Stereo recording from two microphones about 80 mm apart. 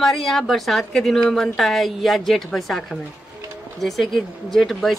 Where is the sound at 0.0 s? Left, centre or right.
Centre.